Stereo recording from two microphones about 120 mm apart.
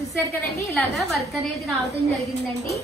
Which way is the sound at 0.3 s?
25° left (ahead or behind).